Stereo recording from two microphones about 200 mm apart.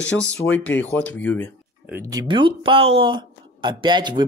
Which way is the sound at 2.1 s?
25° right (ahead or behind).